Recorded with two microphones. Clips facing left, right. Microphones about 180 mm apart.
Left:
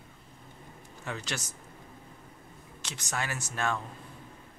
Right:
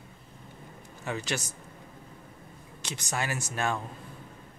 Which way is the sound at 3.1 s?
10° right (ahead or behind).